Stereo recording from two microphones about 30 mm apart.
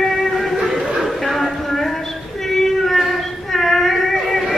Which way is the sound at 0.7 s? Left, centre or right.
Centre.